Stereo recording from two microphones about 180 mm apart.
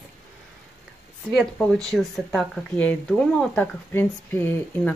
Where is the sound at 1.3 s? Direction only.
5° left (ahead or behind).